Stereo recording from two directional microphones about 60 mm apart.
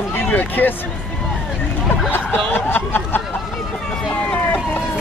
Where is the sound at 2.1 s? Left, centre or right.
Left.